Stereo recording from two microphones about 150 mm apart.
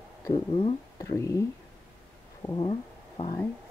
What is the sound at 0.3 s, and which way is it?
Speech, 40° left (ahead or behind).